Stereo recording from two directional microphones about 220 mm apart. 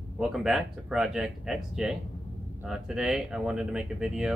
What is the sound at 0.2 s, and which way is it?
Speech, centre (ahead or behind).